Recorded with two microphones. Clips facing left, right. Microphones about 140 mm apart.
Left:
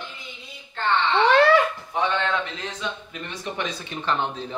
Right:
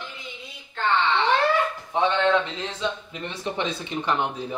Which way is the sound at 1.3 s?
80° left.